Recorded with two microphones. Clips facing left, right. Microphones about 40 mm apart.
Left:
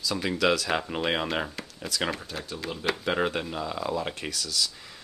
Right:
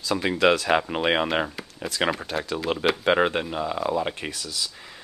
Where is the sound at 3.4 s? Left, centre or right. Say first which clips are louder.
Right 4 dB; right.